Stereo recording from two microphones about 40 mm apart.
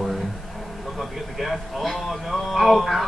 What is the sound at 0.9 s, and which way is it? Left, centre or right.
A man's voice, centre.